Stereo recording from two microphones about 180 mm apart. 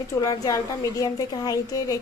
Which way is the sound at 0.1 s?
20° left (ahead or behind).